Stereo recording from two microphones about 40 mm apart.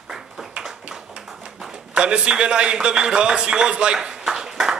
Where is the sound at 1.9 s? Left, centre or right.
Right.